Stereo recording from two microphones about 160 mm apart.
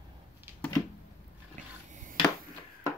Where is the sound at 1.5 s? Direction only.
55° right (ahead or behind).